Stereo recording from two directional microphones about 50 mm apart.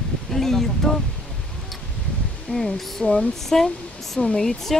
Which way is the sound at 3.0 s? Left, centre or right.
Centre.